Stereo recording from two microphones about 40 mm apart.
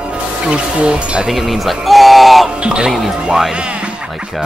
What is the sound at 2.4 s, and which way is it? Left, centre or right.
Music, right.